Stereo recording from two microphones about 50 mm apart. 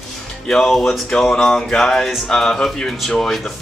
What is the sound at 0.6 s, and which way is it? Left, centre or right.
Music, centre.